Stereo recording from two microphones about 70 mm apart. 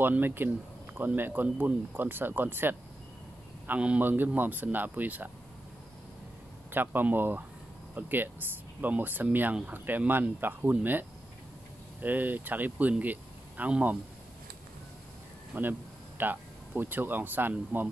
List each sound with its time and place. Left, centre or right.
0.0 s speech: right
6.7 s speech: right
15.5 s speech: right